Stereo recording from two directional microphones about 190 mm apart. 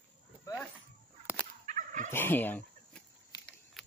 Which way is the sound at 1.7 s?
40° right (ahead or behind).